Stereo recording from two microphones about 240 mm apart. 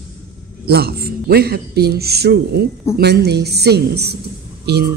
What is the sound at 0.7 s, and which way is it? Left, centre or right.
A man's voice, right.